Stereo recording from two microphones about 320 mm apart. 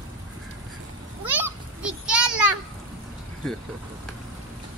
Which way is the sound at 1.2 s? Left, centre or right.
Centre.